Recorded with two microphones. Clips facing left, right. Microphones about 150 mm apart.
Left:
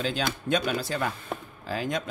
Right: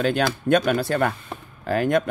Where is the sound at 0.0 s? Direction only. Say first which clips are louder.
Right 7 dB; 60° right (ahead or behind).